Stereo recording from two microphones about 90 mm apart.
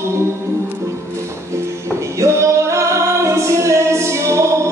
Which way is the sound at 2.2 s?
35° right (ahead or behind).